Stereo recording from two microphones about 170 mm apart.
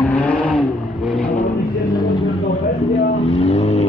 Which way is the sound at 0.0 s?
10° left (ahead or behind).